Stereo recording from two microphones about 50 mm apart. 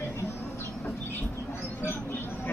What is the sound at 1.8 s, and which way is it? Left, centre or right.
Vehicle, left.